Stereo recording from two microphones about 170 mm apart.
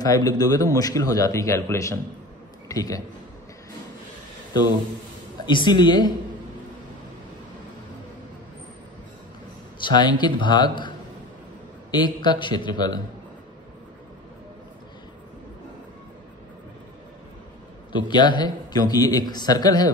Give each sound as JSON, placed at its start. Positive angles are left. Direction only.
{"t": 0.0, "sound": "a man's voice", "side_deg": 20}
{"t": 5.4, "sound": "a man's voice", "side_deg": 25}
{"t": 9.8, "sound": "a man's voice", "side_deg": 25}
{"t": 11.9, "sound": "a man's voice", "side_deg": 25}
{"t": 17.9, "sound": "a man's voice", "side_deg": 25}